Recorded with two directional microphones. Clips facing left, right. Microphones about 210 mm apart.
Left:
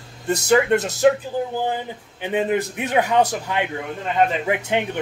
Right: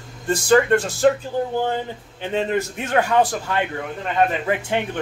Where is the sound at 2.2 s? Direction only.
10° left (ahead or behind).